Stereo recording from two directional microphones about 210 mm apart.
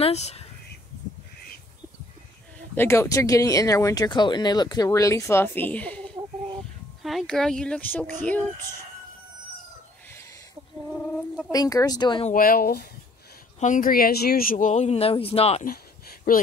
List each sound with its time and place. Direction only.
0.0 s speech: 30° left (ahead or behind)
2.7 s speech: 10° left (ahead or behind)
11.0 s fowl: 5° left (ahead or behind)
11.5 s speech: 20° left (ahead or behind)
12.3 s speech: 40° left (ahead or behind)
15.6 s a sound: 45° left (ahead or behind)